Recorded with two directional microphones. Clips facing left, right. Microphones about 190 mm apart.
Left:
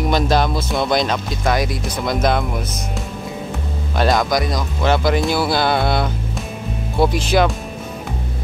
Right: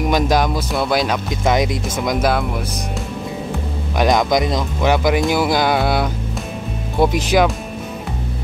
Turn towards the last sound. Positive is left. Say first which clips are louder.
# right 1 dB
turn(degrees=-15)  # may be behind; listen again after turning